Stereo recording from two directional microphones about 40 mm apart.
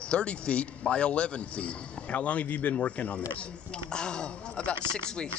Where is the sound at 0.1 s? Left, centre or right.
Left.